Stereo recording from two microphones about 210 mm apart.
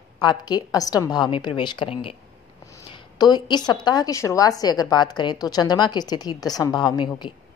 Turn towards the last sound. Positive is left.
turn(degrees=20)  # may be behind; listen again after turning